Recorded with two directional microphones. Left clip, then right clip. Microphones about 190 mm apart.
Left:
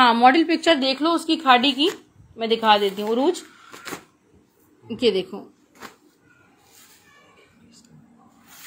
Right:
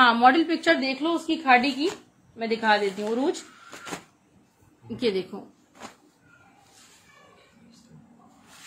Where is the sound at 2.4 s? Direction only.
20° left (ahead or behind).